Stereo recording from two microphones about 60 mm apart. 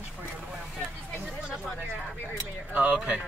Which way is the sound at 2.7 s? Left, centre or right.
Right.